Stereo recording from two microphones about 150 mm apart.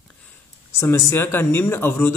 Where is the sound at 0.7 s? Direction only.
20° left (ahead or behind).